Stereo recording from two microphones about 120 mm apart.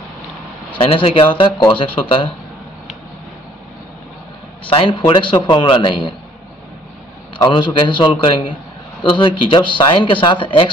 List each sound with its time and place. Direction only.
0.7 s speech: 50° left (ahead or behind)
4.6 s speech: 45° left (ahead or behind)
7.3 s speech: 45° left (ahead or behind)